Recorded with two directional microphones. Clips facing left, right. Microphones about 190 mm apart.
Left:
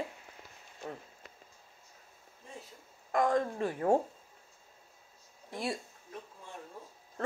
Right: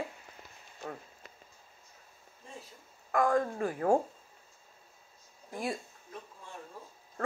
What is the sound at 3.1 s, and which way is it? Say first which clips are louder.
Speech: right 1 dB; 25° left (ahead or behind).